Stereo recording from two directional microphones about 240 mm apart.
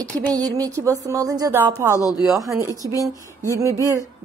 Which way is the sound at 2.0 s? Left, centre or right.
Centre.